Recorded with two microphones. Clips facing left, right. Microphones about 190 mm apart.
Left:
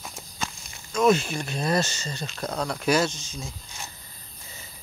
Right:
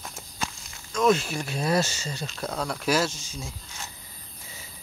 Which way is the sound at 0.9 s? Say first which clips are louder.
Left 1 dB; centre (ahead or behind).